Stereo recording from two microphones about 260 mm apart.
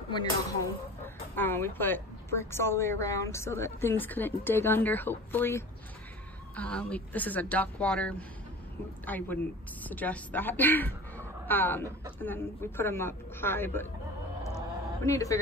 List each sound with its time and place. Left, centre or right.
0.1 s a woman's voice: centre
15.0 s a woman's voice: centre